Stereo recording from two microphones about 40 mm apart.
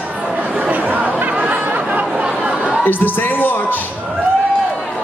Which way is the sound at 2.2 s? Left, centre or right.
Right.